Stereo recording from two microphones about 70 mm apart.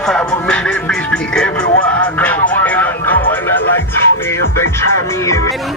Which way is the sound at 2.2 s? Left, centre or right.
Left.